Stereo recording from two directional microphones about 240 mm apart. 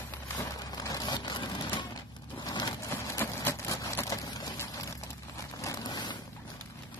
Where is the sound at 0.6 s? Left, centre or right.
Centre.